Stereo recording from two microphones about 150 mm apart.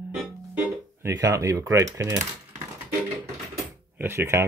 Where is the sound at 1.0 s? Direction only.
20° right (ahead or behind).